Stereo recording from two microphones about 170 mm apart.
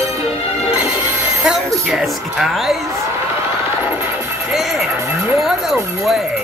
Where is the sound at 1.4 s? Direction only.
5° right (ahead or behind).